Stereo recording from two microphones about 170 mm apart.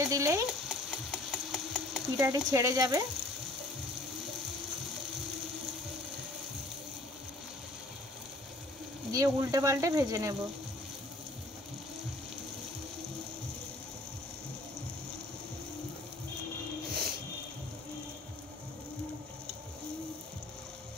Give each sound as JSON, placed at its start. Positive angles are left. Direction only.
{"t": 0.0, "sound": "a sound", "side_deg": -20}
{"t": 0.5, "sound": "sewing machine", "side_deg": 0}
{"t": 2.2, "sound": "speech", "side_deg": -20}
{"t": 9.1, "sound": "speech", "side_deg": -20}